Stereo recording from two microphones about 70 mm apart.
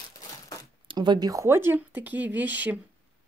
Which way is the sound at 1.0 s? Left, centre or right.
Right.